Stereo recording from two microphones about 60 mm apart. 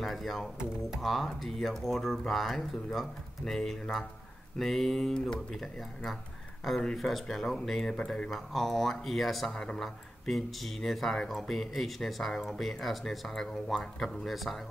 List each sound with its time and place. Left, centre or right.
0.0 s speech: centre